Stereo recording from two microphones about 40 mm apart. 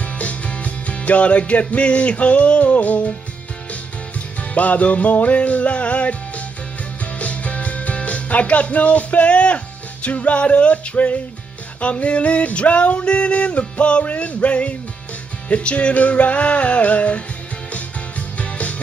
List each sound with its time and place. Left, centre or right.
0.0 s music: left
4.4 s music: left
10.0 s a sound: left
17.7 s music: left